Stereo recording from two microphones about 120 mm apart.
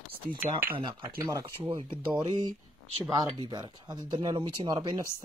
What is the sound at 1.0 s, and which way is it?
Speech, 20° right (ahead or behind).